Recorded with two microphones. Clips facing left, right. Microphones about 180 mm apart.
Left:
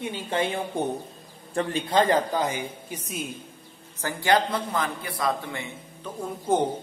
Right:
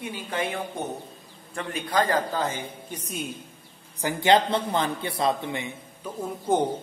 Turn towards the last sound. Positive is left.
turn(degrees=0)  # may be behind; listen again after turning